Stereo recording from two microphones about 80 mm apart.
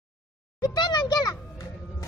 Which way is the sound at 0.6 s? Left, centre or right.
Left.